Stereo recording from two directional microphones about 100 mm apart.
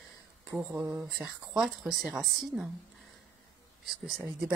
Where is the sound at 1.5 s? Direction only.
5° right (ahead or behind).